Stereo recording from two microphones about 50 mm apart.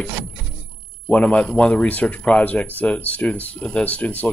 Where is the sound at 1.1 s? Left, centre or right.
Left.